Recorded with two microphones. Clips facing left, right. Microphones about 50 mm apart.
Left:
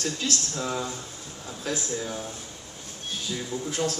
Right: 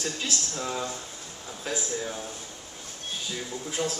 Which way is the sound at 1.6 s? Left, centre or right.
Centre.